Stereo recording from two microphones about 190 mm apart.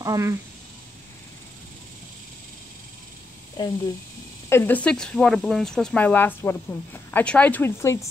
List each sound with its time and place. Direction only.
0.0 s speech: 15° right (ahead or behind)
3.6 s speech: 25° left (ahead or behind)
4.5 s speech: 10° left (ahead or behind)